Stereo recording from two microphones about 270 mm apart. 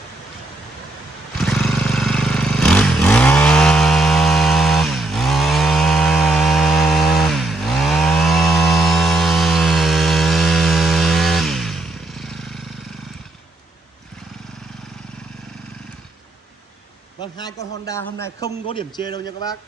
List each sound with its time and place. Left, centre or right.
1.4 s vehicle: centre
17.2 s a sound: centre
18.2 s a man's voice: centre